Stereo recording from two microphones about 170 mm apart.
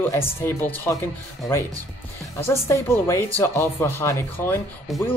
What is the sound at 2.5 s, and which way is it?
Speech, 15° left (ahead or behind).